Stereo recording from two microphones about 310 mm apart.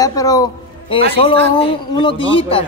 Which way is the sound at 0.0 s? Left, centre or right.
Centre.